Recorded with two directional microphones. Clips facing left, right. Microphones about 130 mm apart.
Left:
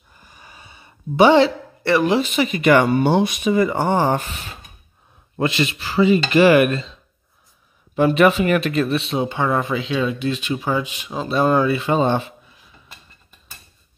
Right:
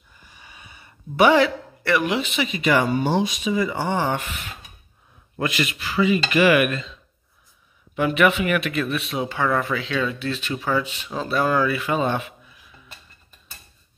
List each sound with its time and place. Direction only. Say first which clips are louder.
0.2 s snort: left 2 dB; 40° left (ahead or behind)
0.7 s speech: left 8 dB; 25° left (ahead or behind)